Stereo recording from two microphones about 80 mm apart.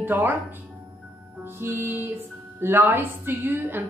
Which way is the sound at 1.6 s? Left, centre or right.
Right.